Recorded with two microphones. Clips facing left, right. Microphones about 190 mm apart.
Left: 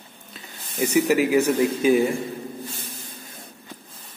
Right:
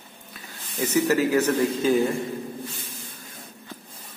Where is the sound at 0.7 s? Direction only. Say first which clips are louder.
Left 2 dB; 15° left (ahead or behind).